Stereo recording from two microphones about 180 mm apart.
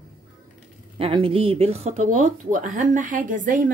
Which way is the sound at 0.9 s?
30° right (ahead or behind).